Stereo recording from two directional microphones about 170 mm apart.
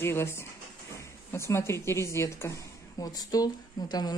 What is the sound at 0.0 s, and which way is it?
A woman's voice, 15° left (ahead or behind).